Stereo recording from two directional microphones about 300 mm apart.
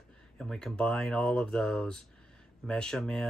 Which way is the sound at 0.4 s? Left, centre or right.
Centre.